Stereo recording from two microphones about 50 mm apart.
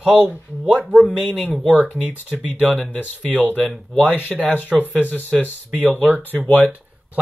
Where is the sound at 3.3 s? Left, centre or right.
Left.